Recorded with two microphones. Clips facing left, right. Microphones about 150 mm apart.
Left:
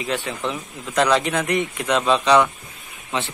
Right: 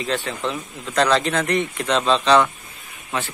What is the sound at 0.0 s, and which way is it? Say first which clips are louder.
Speech: right 1 dB; 15° left (ahead or behind).